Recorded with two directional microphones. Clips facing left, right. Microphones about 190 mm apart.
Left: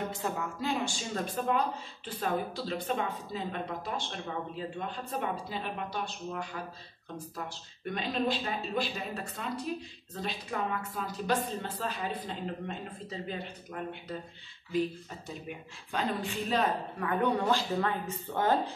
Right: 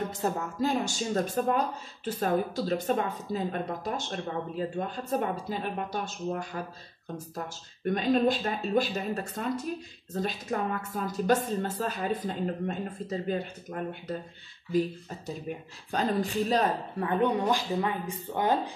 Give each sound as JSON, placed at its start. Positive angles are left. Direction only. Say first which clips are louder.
{"t": 0.2, "sound": "speech", "louder": "right 5 dB", "side_deg": -40}
{"t": 17.1, "sound": "speech", "louder": "right 2 dB", "side_deg": -20}